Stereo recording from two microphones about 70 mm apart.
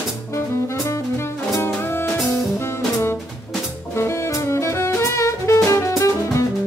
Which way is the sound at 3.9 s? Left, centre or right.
Left.